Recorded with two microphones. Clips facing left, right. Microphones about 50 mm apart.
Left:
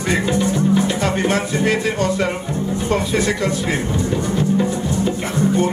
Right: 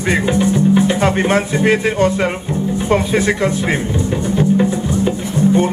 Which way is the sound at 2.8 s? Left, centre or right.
Right.